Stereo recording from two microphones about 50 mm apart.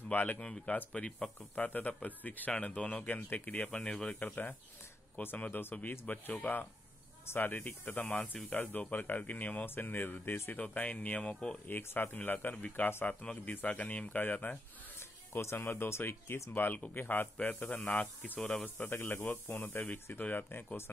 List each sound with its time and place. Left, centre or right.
0.1 s speech: left
0.4 s speech: centre; by 2.5 s left
2.5 s speech: centre
3.2 s speech: left
3.7 s speech: centre
4.2 s speech: left
10.6 s speech: left
11.1 s speech: centre
11.6 s speech: left
15.0 s music: left
15.5 s a man's voice: left
18.4 s speech: centre
18.8 s a man's voice: left